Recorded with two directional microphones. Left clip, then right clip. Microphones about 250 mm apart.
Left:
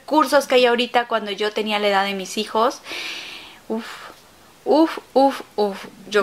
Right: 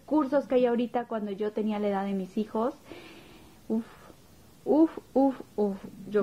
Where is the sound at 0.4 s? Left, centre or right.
Centre.